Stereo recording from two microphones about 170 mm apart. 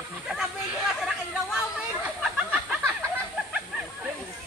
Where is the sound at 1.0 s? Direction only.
5° right (ahead or behind).